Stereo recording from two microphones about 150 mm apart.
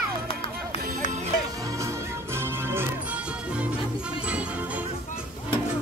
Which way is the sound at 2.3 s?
15° right (ahead or behind).